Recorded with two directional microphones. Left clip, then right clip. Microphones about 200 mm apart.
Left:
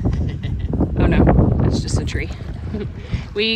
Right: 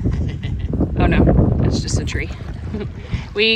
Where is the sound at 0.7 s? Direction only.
Centre (ahead or behind).